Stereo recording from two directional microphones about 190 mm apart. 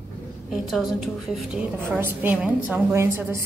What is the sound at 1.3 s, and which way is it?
A woman's voice, 5° right (ahead or behind).